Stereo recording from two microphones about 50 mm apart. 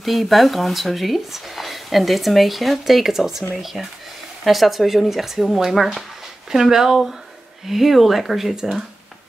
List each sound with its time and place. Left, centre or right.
0.0 s speech: centre